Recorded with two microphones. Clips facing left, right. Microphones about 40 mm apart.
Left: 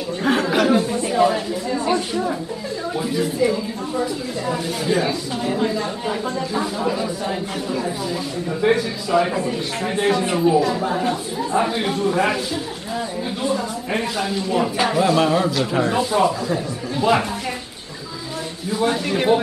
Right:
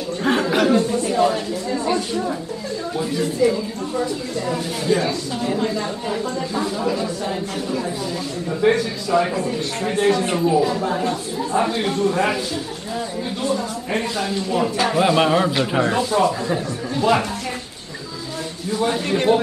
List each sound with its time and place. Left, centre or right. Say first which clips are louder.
0.2 s a sound: even; centre
3.0 s speech: right 1 dB; centre
13.4 s speech: even; centre
15.0 s speech: right 1 dB; centre
16.0 s speech: even; centre
18.7 s speech: even; centre